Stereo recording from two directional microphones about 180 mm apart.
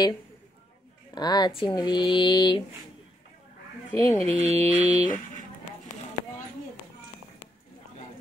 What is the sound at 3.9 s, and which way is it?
Speech, 20° left (ahead or behind).